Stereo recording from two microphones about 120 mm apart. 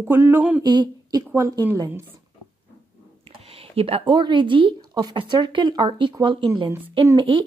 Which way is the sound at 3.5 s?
55° right (ahead or behind).